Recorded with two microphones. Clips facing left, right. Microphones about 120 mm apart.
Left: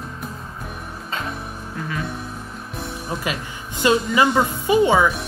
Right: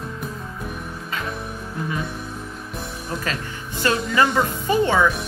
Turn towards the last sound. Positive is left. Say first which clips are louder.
# left 2 dB
turn(degrees=15)  # may be behind; listen again after turning